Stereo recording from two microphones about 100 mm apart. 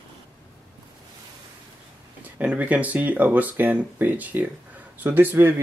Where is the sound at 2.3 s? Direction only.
15° right (ahead or behind).